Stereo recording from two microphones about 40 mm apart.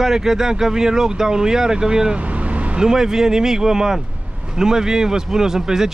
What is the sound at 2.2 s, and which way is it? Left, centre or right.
Vehicle, right.